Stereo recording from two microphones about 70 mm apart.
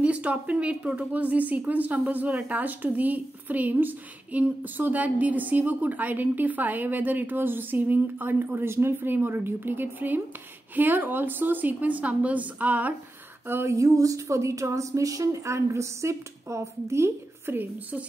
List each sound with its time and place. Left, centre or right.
0.0 s speech: right
13.5 s a sound: right
13.7 s a woman's voice: right